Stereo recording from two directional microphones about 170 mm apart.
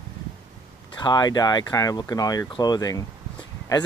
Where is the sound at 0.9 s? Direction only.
25° left (ahead or behind).